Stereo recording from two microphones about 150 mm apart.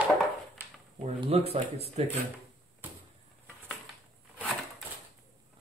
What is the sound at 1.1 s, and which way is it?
Speech, 40° right (ahead or behind).